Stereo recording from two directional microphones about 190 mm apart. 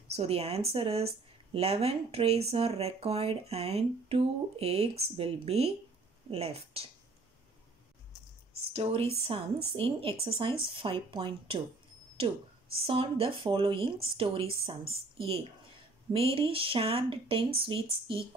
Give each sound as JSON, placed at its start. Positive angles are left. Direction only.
{"t": 0.1, "sound": "speech", "side_deg": -35}
{"t": 8.7, "sound": "speech", "side_deg": -30}